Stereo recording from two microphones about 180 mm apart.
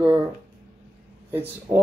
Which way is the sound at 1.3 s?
10° right (ahead or behind).